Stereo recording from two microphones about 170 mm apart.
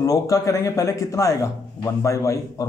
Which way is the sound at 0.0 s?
20° left (ahead or behind).